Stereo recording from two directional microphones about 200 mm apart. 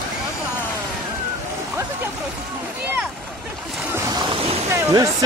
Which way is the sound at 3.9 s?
20° right (ahead or behind).